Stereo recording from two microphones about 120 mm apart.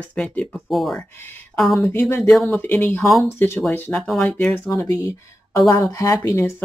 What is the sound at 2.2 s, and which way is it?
Speech, 5° left (ahead or behind).